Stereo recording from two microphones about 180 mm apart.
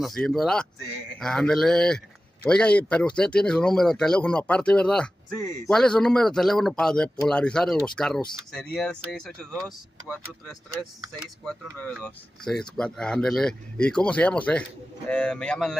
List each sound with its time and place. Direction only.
0.0 s speech: centre (ahead or behind)